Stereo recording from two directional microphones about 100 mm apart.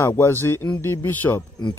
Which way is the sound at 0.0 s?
25° left (ahead or behind).